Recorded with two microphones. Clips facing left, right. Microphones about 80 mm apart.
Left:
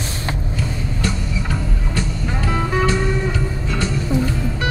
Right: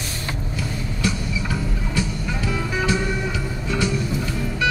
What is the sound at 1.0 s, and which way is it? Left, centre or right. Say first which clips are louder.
Music: right 1 dB; left.